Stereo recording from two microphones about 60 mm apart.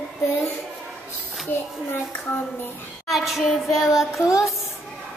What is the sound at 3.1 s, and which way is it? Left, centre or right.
Child singing, centre.